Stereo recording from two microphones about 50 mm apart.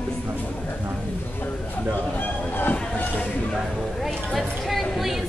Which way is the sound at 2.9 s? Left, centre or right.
Left.